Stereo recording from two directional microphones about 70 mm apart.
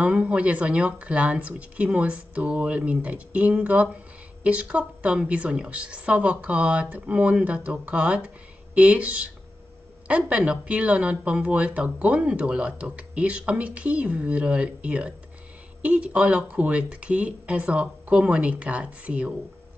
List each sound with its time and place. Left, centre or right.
0.0 s speech: centre